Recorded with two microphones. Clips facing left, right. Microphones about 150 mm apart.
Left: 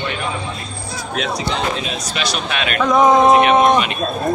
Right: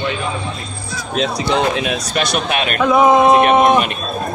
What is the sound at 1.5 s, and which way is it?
Speech, 65° right (ahead or behind).